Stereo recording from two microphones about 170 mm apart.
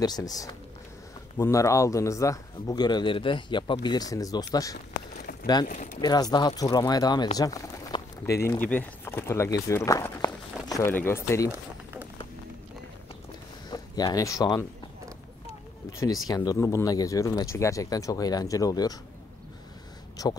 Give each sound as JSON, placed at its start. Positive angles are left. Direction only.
{"t": 0.0, "sound": "speech", "side_deg": 20}
{"t": 5.7, "sound": "speech", "side_deg": 45}
{"t": 5.9, "sound": "speech", "side_deg": 25}
{"t": 13.7, "sound": "speech", "side_deg": 25}
{"t": 16.0, "sound": "speech", "side_deg": 20}
{"t": 20.2, "sound": "speech", "side_deg": 20}